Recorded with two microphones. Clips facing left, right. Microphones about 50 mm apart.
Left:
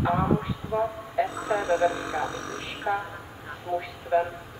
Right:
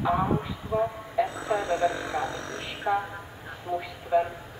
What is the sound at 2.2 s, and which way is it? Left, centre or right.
Speech, centre.